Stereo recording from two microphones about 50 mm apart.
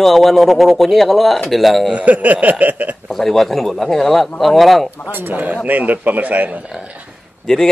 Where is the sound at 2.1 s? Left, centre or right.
Right.